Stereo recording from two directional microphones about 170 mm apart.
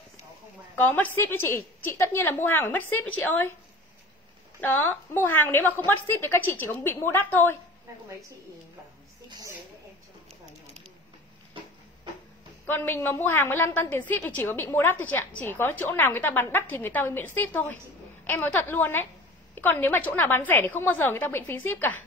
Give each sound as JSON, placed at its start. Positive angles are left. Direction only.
{"t": 0.7, "sound": "a woman's voice", "side_deg": 10}
{"t": 4.6, "sound": "a woman's voice", "side_deg": 10}
{"t": 9.3, "sound": "a sound", "side_deg": -20}
{"t": 12.6, "sound": "a woman's voice", "side_deg": 10}